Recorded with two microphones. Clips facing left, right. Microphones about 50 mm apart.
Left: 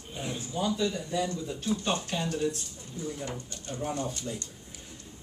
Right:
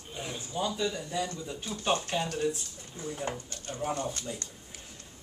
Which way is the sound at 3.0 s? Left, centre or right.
Right.